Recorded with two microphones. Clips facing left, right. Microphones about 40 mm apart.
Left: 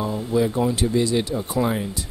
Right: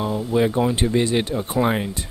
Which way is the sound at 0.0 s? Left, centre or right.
Right.